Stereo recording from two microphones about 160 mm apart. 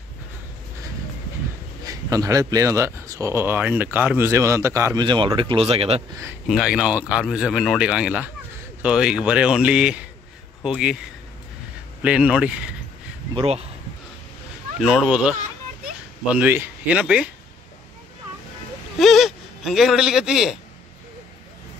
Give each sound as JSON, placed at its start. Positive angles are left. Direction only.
{"t": 1.9, "sound": "speech", "side_deg": -20}
{"t": 6.4, "sound": "speech", "side_deg": -5}
{"t": 13.3, "sound": "speech", "side_deg": -35}
{"t": 14.8, "sound": "speech", "side_deg": 0}
{"t": 18.9, "sound": "a man's voice", "side_deg": 0}